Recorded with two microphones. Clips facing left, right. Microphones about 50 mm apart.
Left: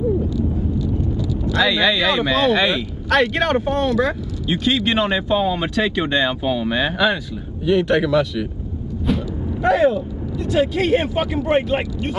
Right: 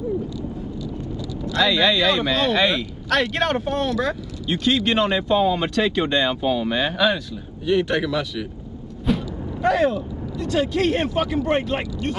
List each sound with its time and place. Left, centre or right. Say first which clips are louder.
1.1 s vehicle: left 5 dB; centre
1.6 s speech: left 1 dB; centre